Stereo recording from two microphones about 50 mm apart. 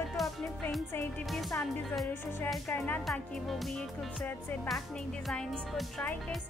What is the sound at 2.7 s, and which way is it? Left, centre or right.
Speech, left.